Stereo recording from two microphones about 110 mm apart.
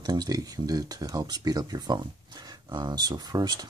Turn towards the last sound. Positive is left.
turn(degrees=-40)  # may be behind; listen again after turning